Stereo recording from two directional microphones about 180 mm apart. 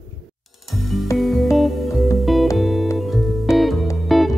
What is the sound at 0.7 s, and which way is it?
Music, centre (ahead or behind).